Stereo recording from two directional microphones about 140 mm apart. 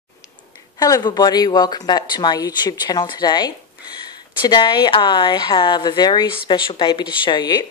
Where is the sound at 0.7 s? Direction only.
25° left (ahead or behind).